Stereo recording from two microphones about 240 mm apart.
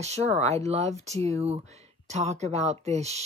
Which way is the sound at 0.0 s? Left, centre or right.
Right.